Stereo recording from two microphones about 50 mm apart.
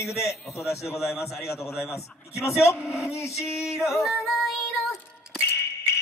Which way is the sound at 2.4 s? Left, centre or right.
Left.